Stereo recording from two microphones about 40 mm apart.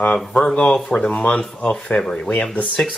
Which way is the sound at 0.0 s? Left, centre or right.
Left.